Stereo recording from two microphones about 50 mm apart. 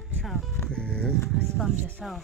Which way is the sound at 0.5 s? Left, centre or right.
Centre.